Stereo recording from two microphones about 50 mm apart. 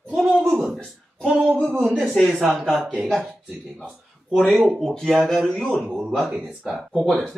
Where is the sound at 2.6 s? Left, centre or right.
Centre.